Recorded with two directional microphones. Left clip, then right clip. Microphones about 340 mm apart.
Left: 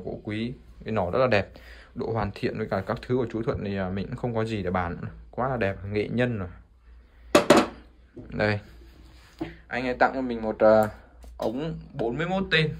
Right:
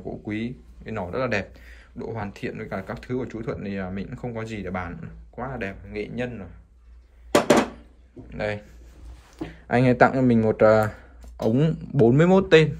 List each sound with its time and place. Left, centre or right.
0.2 s speech: centre
8.3 s speech: centre
9.4 s speech: centre